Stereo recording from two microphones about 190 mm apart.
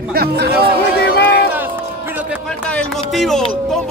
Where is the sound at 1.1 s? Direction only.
60° left (ahead or behind).